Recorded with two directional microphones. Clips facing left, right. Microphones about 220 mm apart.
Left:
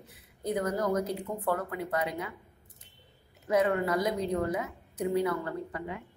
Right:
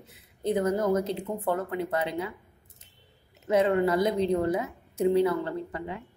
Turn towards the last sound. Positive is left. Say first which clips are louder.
# right 2 dB
turn(degrees=-30)  # may be behind; listen again after turning